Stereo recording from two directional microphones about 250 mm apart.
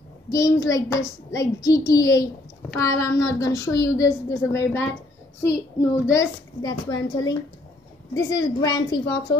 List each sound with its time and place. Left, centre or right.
0.3 s a woman's voice: centre